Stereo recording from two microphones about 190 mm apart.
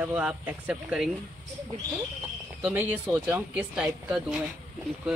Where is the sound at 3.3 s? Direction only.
10° right (ahead or behind).